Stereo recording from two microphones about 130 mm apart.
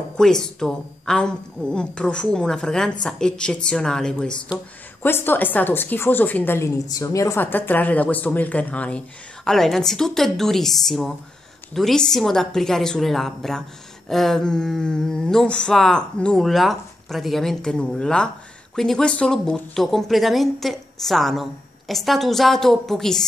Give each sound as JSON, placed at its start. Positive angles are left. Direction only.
{"t": 0.2, "sound": "a woman's voice", "side_deg": 5}
{"t": 6.9, "sound": "a woman's voice", "side_deg": 25}